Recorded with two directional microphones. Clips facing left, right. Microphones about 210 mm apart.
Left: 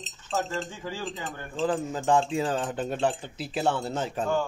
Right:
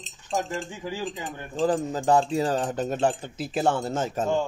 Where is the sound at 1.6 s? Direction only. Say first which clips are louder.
Right 3 dB; 40° right (ahead or behind).